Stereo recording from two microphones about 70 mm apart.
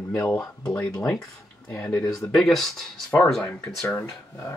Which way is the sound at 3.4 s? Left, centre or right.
Left.